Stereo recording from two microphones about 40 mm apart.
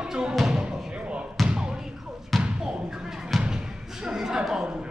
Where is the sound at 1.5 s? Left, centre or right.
Centre.